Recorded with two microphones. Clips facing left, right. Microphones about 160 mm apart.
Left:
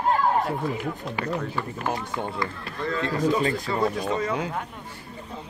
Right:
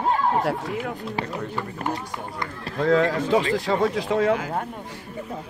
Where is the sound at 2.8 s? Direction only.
80° right.